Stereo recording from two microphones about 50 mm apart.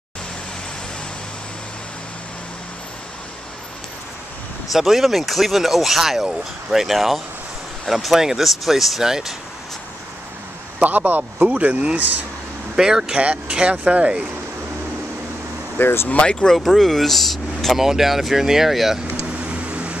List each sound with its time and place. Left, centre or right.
4.7 s speech: centre
10.8 s speech: right
12.7 s speech: centre
13.0 s speech: right
15.8 s speech: left
16.1 s speech: left
16.5 s speech: centre
17.7 s speech: centre
19.4 s a sound: right